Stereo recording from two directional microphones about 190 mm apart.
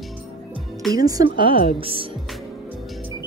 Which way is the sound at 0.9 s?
20° right (ahead or behind).